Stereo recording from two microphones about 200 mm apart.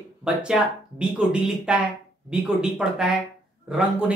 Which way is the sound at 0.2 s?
5° right (ahead or behind).